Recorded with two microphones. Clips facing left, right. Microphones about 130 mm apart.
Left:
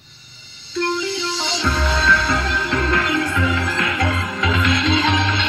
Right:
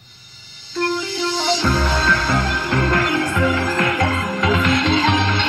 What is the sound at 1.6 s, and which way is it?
Music, 40° right (ahead or behind).